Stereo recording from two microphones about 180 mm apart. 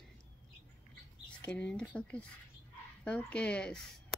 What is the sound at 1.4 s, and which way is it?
A woman's voice, 5° left (ahead or behind).